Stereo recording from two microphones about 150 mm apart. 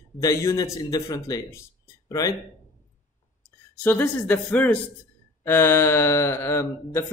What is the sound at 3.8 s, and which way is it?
Speech, 10° left (ahead or behind).